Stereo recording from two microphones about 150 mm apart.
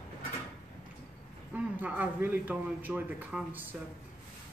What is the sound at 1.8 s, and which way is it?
Speech, 10° right (ahead or behind).